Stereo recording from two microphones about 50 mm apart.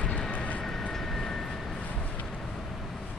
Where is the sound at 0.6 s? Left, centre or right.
Centre.